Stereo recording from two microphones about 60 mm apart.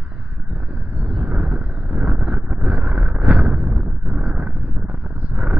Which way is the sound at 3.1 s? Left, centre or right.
Centre.